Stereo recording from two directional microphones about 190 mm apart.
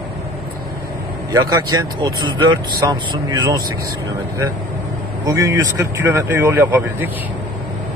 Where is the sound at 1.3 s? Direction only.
20° right (ahead or behind).